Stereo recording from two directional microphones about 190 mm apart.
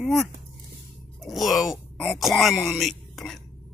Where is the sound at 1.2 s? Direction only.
Centre (ahead or behind).